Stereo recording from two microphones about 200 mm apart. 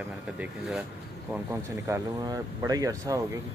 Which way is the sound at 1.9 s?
15° right (ahead or behind).